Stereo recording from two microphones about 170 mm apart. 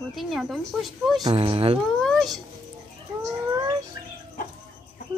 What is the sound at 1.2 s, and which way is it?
Speech, 30° right (ahead or behind).